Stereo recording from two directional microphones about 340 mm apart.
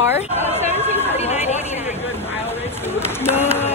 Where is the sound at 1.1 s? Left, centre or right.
Centre.